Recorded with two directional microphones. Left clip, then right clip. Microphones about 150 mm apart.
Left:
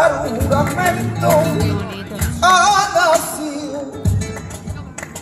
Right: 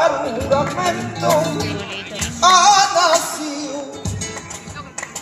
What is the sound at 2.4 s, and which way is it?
Music, 20° left (ahead or behind).